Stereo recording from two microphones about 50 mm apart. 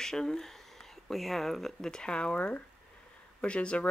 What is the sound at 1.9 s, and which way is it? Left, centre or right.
Speech, centre.